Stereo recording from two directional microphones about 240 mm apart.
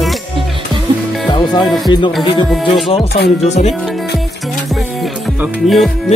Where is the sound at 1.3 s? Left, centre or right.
Centre.